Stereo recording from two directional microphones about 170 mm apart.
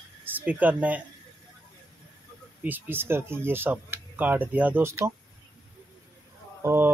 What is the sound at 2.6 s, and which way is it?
Speech, 10° right (ahead or behind).